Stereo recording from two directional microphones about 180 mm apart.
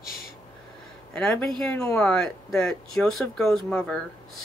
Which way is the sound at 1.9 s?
15° left (ahead or behind).